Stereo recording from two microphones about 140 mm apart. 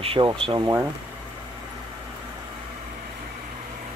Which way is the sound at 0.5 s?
20° right (ahead or behind).